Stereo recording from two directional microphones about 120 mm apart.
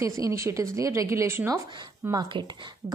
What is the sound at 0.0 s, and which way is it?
A woman's voice, 25° right (ahead or behind).